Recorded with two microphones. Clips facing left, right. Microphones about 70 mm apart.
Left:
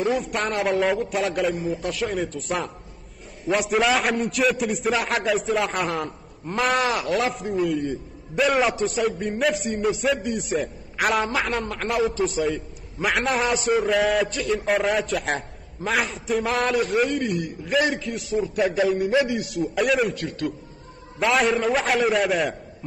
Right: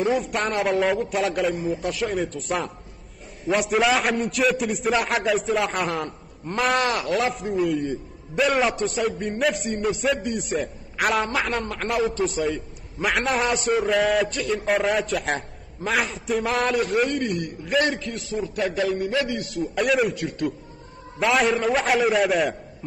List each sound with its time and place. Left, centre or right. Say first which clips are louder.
0.0 s a man's voice: right 1 dB; centre
19.4 s a man's voice: left 1 dB; centre